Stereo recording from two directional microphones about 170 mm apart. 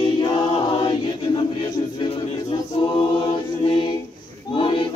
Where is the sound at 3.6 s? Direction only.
30° left (ahead or behind).